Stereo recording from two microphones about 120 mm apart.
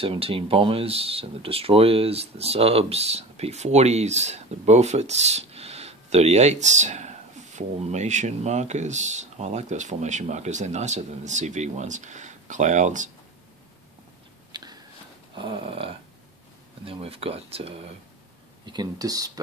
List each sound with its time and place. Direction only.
0.0 s speech: 50° right (ahead or behind); by 13.1 s 90° right
14.5 s biting: 35° right (ahead or behind)
15.3 s a sound: 45° right (ahead or behind)
16.8 s speech: 50° right (ahead or behind)
18.7 s speech: 35° right (ahead or behind)